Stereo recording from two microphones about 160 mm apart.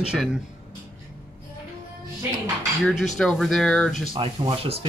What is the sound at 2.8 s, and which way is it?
Speech, centre (ahead or behind).